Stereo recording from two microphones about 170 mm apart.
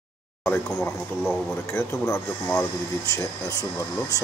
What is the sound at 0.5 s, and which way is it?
Speech, 5° left (ahead or behind).